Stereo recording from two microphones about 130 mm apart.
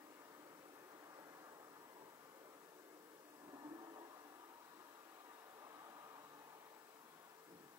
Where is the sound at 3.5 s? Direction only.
30° right (ahead or behind).